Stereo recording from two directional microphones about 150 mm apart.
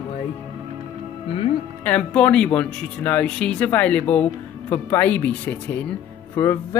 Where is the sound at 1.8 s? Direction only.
10° left (ahead or behind).